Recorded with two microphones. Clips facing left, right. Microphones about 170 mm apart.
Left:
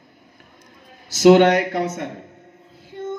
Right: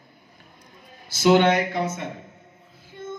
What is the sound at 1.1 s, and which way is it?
Speech, 75° left (ahead or behind).